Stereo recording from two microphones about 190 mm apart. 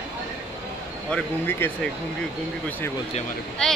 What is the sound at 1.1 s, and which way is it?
Speech, 10° left (ahead or behind).